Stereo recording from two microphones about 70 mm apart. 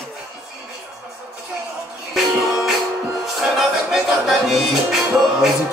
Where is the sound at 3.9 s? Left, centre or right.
Centre.